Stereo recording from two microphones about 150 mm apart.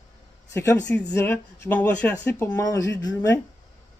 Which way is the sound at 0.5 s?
15° left (ahead or behind).